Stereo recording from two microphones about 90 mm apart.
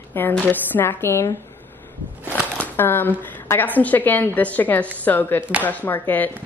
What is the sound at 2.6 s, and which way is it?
Speech, 20° left (ahead or behind).